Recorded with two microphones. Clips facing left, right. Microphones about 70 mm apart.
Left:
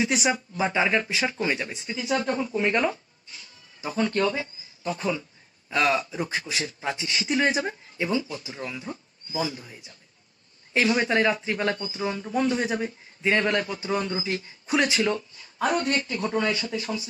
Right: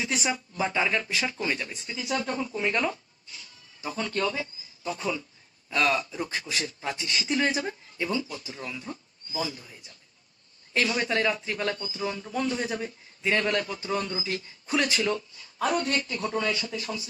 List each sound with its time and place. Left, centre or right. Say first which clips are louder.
0.3 s a man's voice: left 3 dB; centre
7.3 s a man's voice: left 3 dB; left
10.7 s a man's voice: left 4 dB; left
14.7 s speech: left 3 dB; centre